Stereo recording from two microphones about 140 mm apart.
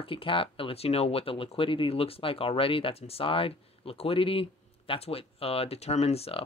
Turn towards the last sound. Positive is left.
turn(degrees=45)  # may be behind; listen again after turning